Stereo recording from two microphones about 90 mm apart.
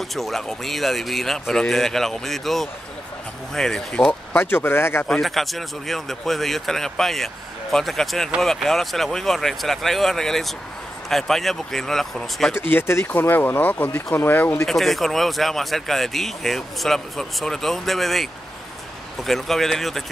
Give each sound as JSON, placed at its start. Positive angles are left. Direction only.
{"t": 0.1, "sound": "speech", "side_deg": 0}
{"t": 4.3, "sound": "speech", "side_deg": 25}
{"t": 5.0, "sound": "speech", "side_deg": 5}
{"t": 12.5, "sound": "speech", "side_deg": 25}
{"t": 14.7, "sound": "speech", "side_deg": 0}